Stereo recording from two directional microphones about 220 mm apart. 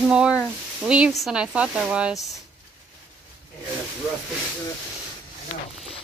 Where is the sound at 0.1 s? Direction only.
5° right (ahead or behind).